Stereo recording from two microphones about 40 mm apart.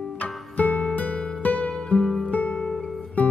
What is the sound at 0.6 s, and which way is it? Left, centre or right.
Music, left.